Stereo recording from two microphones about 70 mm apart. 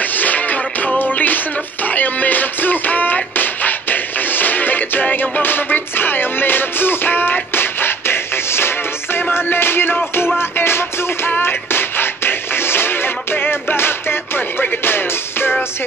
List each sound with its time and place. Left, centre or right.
0.0 s music: left